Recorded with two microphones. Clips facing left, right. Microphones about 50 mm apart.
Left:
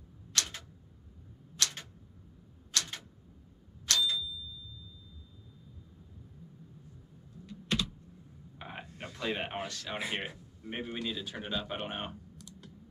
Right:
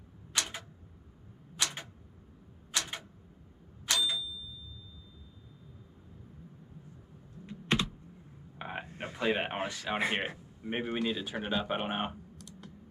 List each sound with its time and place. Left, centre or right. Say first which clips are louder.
0.3 s tick-tock: right 1 dB; centre
3.8 s a sound: even; centre
7.4 s typing: right 3 dB; right
8.5 s speech: right 5 dB; centre